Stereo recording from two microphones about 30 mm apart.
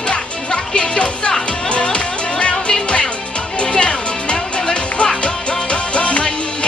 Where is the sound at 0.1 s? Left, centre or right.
Left.